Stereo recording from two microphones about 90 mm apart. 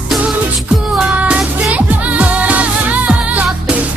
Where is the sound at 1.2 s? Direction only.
15° right (ahead or behind).